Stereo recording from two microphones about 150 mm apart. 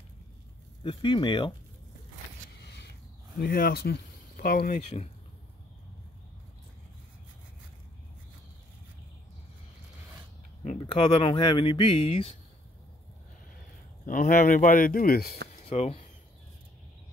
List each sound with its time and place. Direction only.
0.8 s speech: 30° left (ahead or behind)
3.3 s speech: 80° left
4.7 s speech: 45° left (ahead or behind)
10.8 s speech: 35° left (ahead or behind)
14.0 s speech: 70° left (ahead or behind); by 15.3 s 90° left
15.6 s speech: 40° left (ahead or behind)